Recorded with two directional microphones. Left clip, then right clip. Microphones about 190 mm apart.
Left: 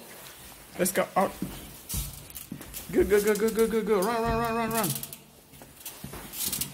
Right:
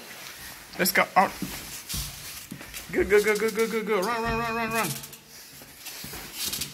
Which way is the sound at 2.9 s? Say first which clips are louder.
Right 2 dB; 30° left (ahead or behind).